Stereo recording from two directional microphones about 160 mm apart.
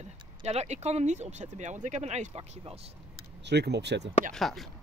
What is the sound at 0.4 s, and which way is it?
Speech, 45° right (ahead or behind).